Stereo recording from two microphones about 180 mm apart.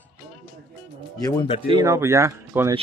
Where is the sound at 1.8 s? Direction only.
15° right (ahead or behind).